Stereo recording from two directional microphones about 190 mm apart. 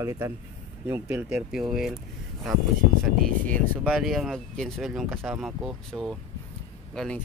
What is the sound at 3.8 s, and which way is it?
Speech, centre (ahead or behind).